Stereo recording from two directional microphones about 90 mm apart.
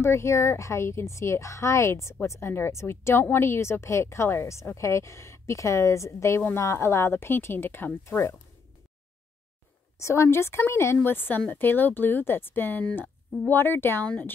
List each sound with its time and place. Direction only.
0.0 s a woman's voice: 30° left (ahead or behind)
9.9 s speech: 35° left (ahead or behind); by 14.3 s 15° left (ahead or behind)